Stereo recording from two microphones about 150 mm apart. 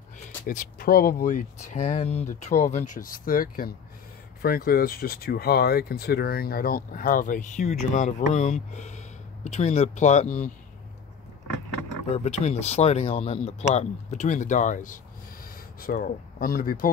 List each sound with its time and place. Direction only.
0.5 s speech: 70° left (ahead or behind)
4.4 s speech: 85° left; by 10.4 s 50° left (ahead or behind)
12.2 s speech: 45° left (ahead or behind)
15.4 s speech: 75° left (ahead or behind)